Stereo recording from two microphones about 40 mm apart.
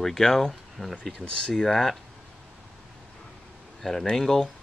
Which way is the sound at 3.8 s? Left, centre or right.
Centre.